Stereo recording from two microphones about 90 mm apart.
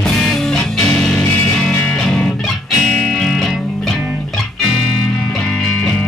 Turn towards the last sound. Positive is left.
turn(degrees=15)  # may be behind; listen again after turning